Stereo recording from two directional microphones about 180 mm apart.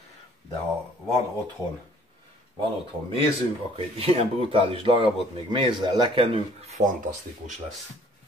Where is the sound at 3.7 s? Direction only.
30° right (ahead or behind).